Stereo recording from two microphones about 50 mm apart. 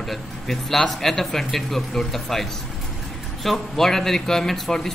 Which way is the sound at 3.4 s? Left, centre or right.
Centre.